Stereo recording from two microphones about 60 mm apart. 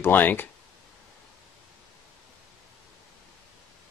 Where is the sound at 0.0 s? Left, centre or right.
Left.